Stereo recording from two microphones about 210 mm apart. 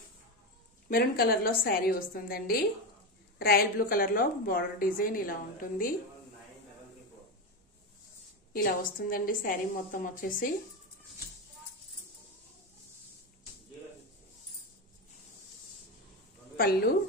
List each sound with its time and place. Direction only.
0.8 s a woman's voice: 45° left (ahead or behind)
8.5 s a woman's voice: 45° left (ahead or behind)
16.5 s a woman's voice: 45° left (ahead or behind)